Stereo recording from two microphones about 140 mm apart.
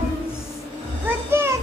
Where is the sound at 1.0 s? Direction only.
15° right (ahead or behind).